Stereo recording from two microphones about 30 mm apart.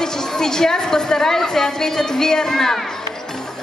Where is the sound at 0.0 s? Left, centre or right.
Centre.